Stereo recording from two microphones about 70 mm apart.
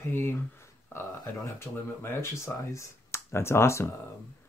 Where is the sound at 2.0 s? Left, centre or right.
Left.